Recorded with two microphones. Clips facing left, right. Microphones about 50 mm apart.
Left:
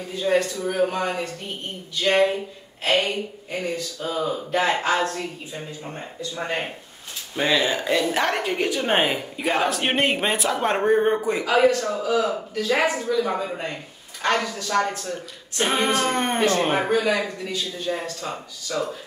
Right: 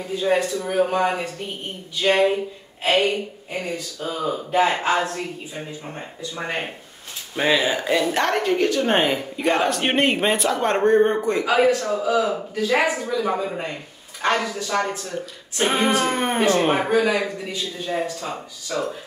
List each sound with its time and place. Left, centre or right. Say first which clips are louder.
0.2 s speech: even; centre
11.4 s speech: even; centre